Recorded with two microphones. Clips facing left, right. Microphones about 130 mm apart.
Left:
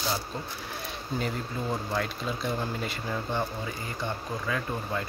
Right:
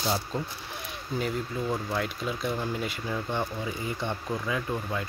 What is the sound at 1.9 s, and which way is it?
Speech, 5° right (ahead or behind).